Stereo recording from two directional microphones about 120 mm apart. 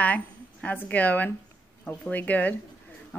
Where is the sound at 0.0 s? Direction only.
10° left (ahead or behind).